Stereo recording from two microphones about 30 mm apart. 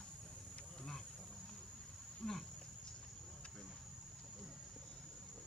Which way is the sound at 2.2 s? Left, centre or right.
Centre.